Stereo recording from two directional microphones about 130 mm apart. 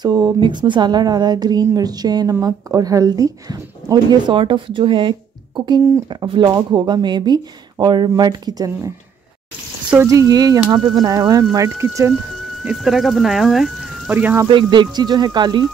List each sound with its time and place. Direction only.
0.0 s speech: 30° right (ahead or behind)
6.2 s speech: 35° right (ahead or behind)
10.0 s speech: 25° right (ahead or behind)
12.6 s speech: centre (ahead or behind)
14.1 s speech: 15° right (ahead or behind)
14.5 s speech: 40° right (ahead or behind)